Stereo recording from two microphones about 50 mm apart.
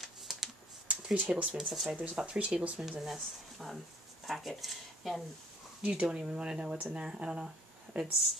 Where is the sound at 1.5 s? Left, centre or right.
Centre.